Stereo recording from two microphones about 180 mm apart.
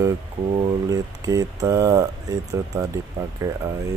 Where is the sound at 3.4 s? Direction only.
20° right (ahead or behind).